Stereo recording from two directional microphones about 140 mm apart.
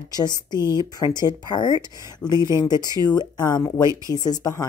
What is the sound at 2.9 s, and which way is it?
A woman's voice, 25° left (ahead or behind).